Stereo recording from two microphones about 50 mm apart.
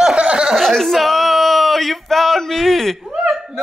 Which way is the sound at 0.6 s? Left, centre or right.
Centre.